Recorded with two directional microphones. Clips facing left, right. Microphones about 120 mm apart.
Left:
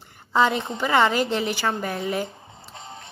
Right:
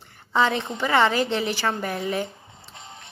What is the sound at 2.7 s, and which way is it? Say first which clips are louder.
Music: left 4 dB; 35° left (ahead or behind).